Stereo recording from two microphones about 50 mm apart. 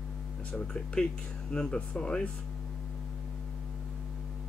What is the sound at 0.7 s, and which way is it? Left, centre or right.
Speech, centre.